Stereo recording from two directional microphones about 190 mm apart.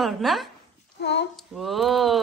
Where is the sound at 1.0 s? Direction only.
65° left (ahead or behind).